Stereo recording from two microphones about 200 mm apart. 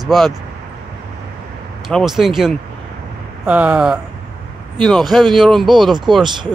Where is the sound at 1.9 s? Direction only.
Centre (ahead or behind).